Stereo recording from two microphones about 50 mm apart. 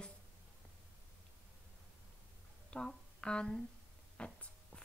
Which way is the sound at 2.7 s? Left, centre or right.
Centre.